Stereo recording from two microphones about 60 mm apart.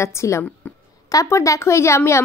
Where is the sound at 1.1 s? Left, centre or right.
Left.